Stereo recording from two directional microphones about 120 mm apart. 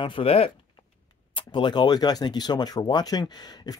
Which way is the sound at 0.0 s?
50° left (ahead or behind).